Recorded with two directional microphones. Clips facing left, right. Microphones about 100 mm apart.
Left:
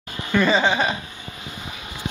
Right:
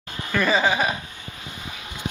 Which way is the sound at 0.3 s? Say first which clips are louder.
Left 2 dB; 5° right (ahead or behind).